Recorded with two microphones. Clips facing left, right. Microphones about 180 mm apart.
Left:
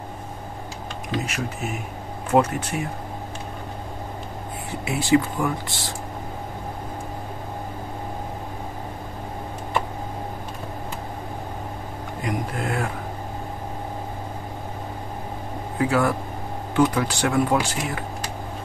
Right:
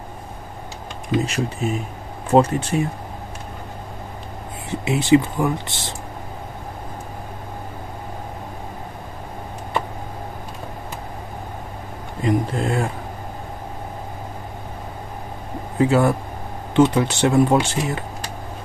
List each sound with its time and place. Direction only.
1.2 s speech: 30° right (ahead or behind)
4.6 s speech: 20° right (ahead or behind)
12.2 s speech: 25° right (ahead or behind)
15.8 s speech: 25° right (ahead or behind)